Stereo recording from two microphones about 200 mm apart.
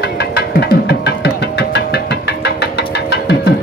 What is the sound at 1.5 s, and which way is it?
Music, 55° left (ahead or behind).